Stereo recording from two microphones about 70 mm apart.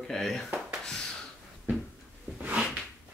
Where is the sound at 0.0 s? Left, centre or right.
Centre.